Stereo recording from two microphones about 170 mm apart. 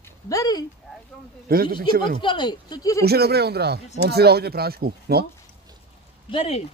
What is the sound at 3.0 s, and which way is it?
Speech, 70° right (ahead or behind).